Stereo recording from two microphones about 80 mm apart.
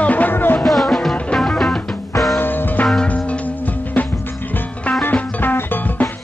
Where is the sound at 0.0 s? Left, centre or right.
Centre.